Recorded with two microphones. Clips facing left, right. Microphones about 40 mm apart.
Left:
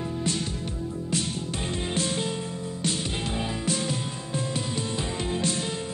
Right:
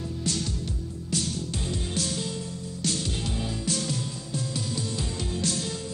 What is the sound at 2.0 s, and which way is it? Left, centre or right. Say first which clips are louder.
Music: left 4 dB; left.